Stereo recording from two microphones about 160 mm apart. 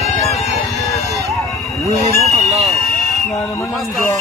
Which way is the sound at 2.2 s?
45° right (ahead or behind).